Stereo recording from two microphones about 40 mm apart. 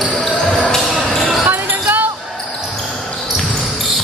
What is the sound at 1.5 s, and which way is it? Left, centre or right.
Basketball bounce, right.